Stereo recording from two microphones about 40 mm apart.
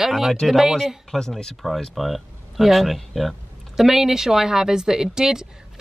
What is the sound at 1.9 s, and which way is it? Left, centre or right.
Speech, centre.